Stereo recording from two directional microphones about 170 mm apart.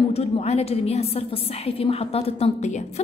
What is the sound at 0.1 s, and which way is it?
A woman's voice, 35° left (ahead or behind).